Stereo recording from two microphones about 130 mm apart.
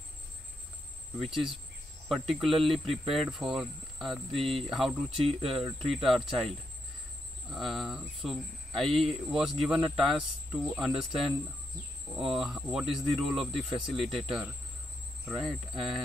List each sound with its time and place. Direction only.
1.2 s speech: 5° right (ahead or behind)
12.1 s cricket: 5° right (ahead or behind)
13.1 s speech: centre (ahead or behind)